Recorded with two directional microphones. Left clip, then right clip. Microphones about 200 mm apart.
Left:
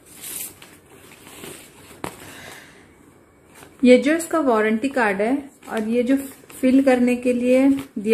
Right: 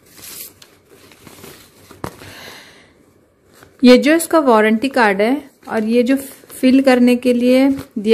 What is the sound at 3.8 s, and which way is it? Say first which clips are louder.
A woman's voice: right 5 dB; 45° right (ahead or behind).